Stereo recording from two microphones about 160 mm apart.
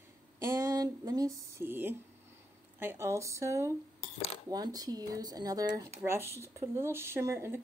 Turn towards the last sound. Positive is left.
turn(degrees=-15)  # may be behind; listen again after turning